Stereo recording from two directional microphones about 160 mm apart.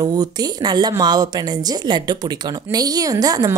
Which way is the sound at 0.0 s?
25° right (ahead or behind).